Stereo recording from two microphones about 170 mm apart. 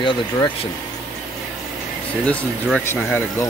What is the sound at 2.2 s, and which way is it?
Speech, 5° left (ahead or behind).